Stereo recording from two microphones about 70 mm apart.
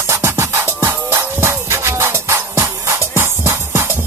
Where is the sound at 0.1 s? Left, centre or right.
Right.